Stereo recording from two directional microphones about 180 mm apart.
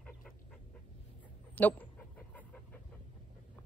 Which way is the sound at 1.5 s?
10° left (ahead or behind).